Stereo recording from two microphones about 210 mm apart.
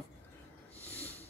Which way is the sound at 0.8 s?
10° left (ahead or behind).